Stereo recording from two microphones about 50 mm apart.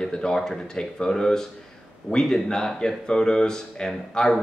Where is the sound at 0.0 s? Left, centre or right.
Centre.